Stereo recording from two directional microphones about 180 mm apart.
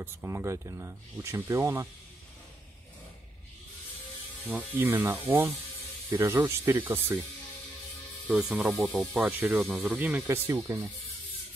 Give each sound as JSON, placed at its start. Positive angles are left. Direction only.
{"t": 0.0, "sound": "speech", "side_deg": -15}
{"t": 4.5, "sound": "speech", "side_deg": -10}
{"t": 8.3, "sound": "speech", "side_deg": -5}